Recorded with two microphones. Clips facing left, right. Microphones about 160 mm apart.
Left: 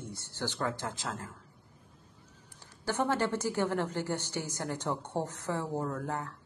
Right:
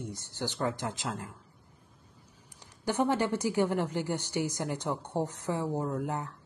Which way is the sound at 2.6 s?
15° right (ahead or behind).